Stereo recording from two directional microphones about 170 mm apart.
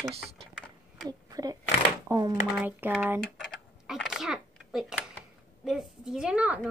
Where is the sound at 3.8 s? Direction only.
Centre (ahead or behind).